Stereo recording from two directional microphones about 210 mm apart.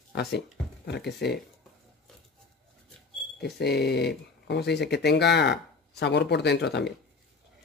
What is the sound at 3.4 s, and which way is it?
Speech, 50° left (ahead or behind).